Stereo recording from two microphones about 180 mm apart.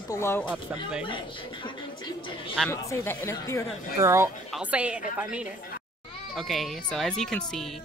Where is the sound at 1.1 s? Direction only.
25° left (ahead or behind).